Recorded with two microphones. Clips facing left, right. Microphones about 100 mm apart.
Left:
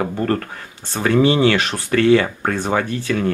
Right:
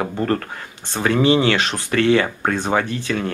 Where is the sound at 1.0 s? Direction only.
20° right (ahead or behind).